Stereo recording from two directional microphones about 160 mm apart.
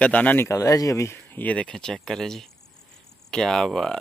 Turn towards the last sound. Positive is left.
turn(degrees=5)  # may be behind; listen again after turning